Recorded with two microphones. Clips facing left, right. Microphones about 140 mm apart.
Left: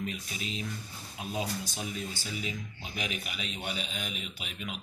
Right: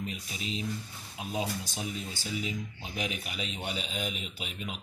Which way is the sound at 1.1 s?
20° right (ahead or behind).